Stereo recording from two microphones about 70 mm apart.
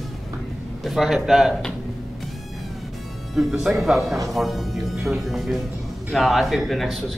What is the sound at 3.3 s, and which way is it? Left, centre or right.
Speech, centre.